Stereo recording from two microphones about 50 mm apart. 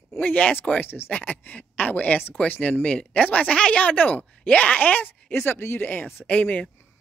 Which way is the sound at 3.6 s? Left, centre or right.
Left.